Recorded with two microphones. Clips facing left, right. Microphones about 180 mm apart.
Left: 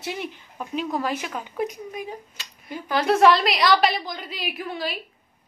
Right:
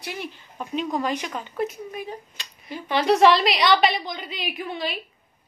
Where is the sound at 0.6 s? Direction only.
5° left (ahead or behind).